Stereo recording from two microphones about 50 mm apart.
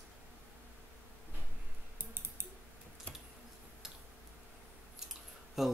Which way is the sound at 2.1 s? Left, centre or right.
Right.